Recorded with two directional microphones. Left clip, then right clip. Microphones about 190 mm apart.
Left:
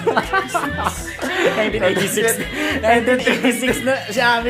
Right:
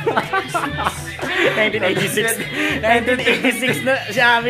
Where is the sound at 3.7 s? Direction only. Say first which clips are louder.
Right 1 dB; 10° right (ahead or behind).